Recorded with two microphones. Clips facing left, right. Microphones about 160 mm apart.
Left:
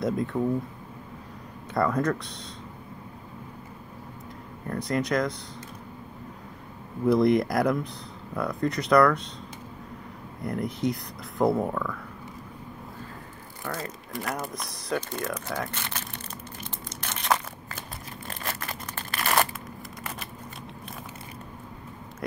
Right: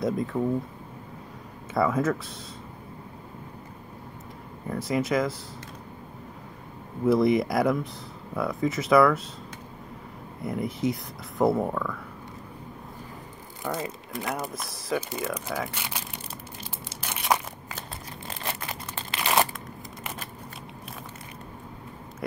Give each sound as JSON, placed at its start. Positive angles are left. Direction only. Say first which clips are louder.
{"t": 0.0, "sound": "speech", "louder": "even", "side_deg": 0}
{"t": 1.7, "sound": "speech", "louder": "right 1 dB", "side_deg": 0}
{"t": 4.6, "sound": "speech", "louder": "right 1 dB", "side_deg": -5}
{"t": 7.1, "sound": "speech", "louder": "even", "side_deg": 0}
{"t": 10.4, "sound": "speech", "louder": "even", "side_deg": 0}
{"t": 13.7, "sound": "speech", "louder": "right 3 dB", "side_deg": -15}
{"t": 14.3, "sound": "speech", "louder": "right 1 dB", "side_deg": 0}
{"t": 17.0, "sound": "a sound", "louder": "right 1 dB", "side_deg": -10}